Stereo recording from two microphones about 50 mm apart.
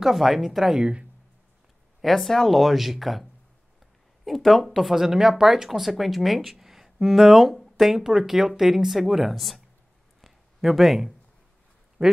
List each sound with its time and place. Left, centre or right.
0.0 s speech: centre
0.7 s speech: right
2.0 s speech: centre
10.2 s a sound: centre
12.0 s quack: centre